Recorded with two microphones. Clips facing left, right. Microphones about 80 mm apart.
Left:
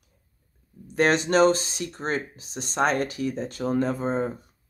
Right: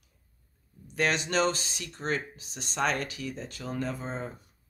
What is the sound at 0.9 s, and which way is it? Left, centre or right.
Speech, left.